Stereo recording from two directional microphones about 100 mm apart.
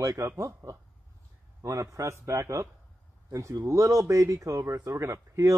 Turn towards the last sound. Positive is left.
turn(degrees=-30)  # may be behind; listen again after turning